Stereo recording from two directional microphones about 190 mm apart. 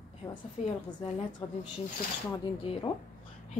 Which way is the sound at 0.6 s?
40° left (ahead or behind).